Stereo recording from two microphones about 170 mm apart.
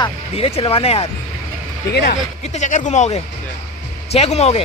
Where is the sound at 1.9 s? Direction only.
65° left (ahead or behind).